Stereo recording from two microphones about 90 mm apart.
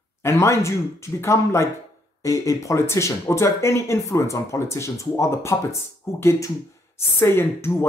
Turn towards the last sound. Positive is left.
turn(degrees=25)  # may be behind; listen again after turning